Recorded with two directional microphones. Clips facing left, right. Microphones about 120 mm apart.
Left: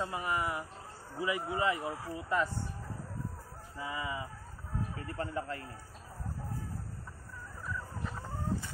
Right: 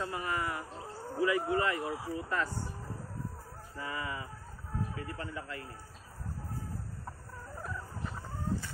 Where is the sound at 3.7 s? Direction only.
15° left (ahead or behind).